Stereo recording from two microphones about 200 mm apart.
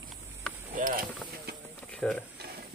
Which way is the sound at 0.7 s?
45° right (ahead or behind).